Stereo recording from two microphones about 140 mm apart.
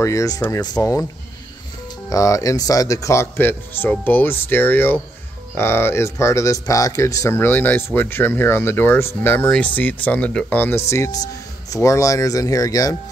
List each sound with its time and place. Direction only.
0.0 s speech: 25° left (ahead or behind)
2.0 s speech: 25° left (ahead or behind)